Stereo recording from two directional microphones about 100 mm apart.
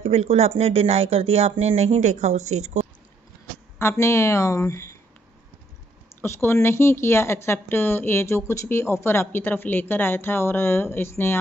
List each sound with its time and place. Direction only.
0.0 s speech: 90° right
3.7 s a woman's voice: 25° left (ahead or behind)
6.2 s a woman's voice: 25° left (ahead or behind)